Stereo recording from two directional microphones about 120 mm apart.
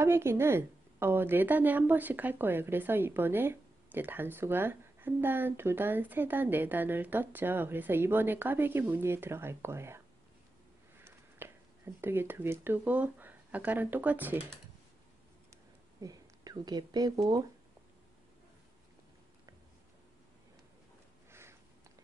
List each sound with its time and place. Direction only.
0.0 s a woman's voice: 20° right (ahead or behind)
16.0 s speech: 30° right (ahead or behind)
21.3 s a sound: 20° right (ahead or behind)